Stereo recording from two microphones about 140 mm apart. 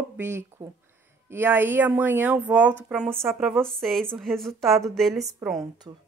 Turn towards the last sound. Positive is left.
turn(degrees=0)  # may be behind; listen again after turning